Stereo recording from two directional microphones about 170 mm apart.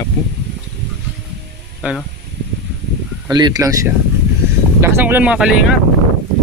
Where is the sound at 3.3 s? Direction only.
25° right (ahead or behind); by 5.6 s 5° right (ahead or behind).